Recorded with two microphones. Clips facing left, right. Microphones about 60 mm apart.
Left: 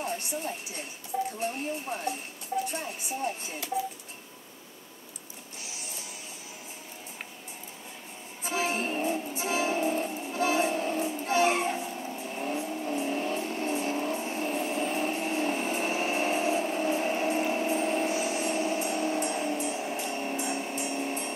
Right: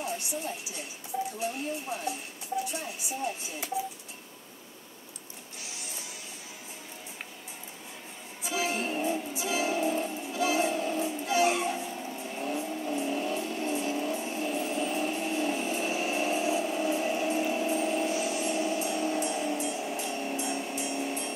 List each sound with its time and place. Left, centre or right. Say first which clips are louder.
0.0 s a woman's voice: left 1 dB; left
1.4 s a sound: left 1 dB; left
8.4 s music: left 1 dB; left
11.9 s vehicle: left 1 dB; centre
12.3 s vehicle: even; left
12.8 s music: left 1 dB; left